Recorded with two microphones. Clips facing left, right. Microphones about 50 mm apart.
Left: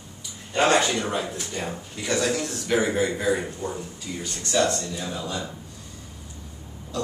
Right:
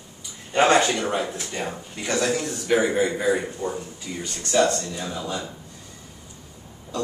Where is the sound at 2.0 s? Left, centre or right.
Right.